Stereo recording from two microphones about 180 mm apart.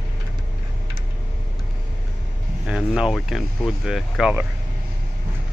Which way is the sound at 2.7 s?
Centre (ahead or behind).